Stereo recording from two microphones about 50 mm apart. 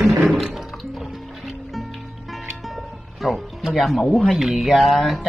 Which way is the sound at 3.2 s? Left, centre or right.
Centre.